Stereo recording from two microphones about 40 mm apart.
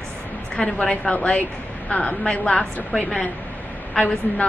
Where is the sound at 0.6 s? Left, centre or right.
Left.